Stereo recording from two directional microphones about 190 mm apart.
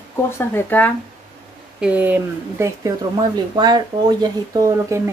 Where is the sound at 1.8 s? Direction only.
10° right (ahead or behind).